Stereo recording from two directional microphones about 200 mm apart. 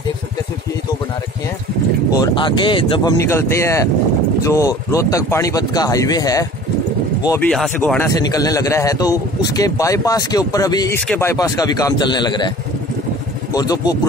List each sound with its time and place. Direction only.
2.1 s speech: 20° left (ahead or behind)
7.2 s speech: 5° left (ahead or behind)
13.5 s speech: 20° left (ahead or behind)